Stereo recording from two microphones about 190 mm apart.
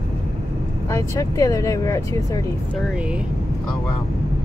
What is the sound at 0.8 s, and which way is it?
Speech, 15° left (ahead or behind).